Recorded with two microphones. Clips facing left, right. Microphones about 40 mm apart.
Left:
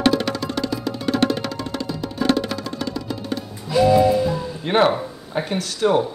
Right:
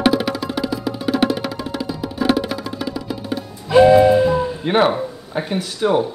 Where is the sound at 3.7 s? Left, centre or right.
Right.